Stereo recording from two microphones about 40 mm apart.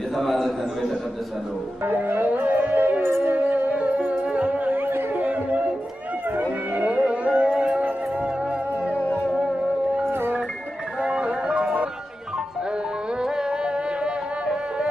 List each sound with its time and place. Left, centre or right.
0.1 s a man's voice: centre
2.0 s music: right
2.3 s music: right
3.0 s music: right
3.3 s music: right
4.6 s music: right
5.1 s a sound: right
11.0 s music: right
13.2 s music: centre